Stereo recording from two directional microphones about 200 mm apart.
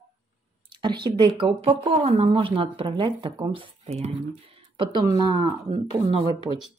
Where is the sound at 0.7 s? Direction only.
20° right (ahead or behind).